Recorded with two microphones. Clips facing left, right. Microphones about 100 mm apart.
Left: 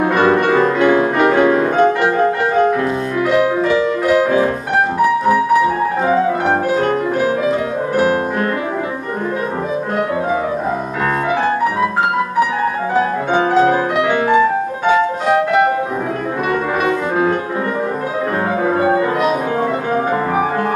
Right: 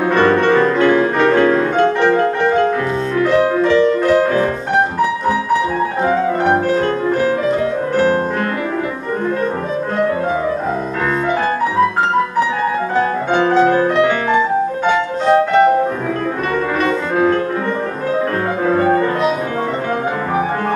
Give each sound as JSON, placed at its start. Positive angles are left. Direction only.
{"t": 0.0, "sound": "music", "side_deg": 15}
{"t": 6.7, "sound": "music", "side_deg": 15}
{"t": 13.4, "sound": "music", "side_deg": 10}
{"t": 16.8, "sound": "music", "side_deg": 15}
{"t": 18.7, "sound": "music", "side_deg": 10}